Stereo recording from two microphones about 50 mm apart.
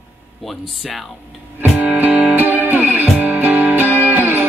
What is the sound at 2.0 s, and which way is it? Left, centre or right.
Music, right.